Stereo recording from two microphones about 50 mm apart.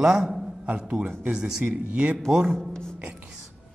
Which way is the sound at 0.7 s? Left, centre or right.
Right.